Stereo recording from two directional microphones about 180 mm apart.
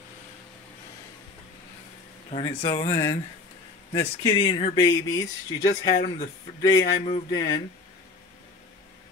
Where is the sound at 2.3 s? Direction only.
30° left (ahead or behind).